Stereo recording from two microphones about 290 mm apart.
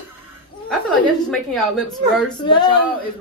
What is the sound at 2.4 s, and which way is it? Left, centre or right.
Speech, centre.